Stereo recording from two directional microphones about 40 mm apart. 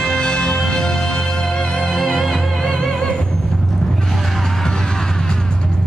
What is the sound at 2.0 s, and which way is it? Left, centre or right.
Music, centre.